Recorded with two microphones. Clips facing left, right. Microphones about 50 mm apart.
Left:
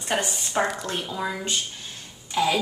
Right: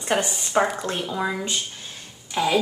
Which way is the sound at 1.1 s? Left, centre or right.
Centre.